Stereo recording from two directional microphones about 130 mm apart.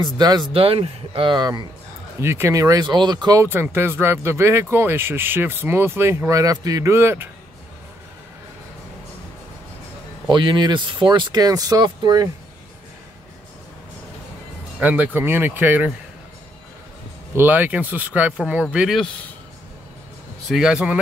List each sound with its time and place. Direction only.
0.0 s speech: 30° right (ahead or behind)
0.5 s speech: 45° right (ahead or behind)
2.1 s speech: 20° right (ahead or behind)
3.4 s speech: 15° right (ahead or behind)
10.2 s speech: 35° right (ahead or behind)
14.8 s speech: 15° right (ahead or behind)
17.4 s speech: 10° right (ahead or behind)
20.4 s speech: 5° right (ahead or behind)